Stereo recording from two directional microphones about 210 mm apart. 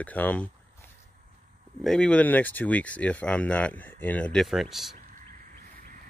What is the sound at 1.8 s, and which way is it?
Speech, 5° left (ahead or behind).